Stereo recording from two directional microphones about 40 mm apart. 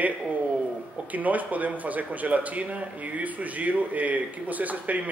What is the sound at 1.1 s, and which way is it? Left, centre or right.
A man's voice, right.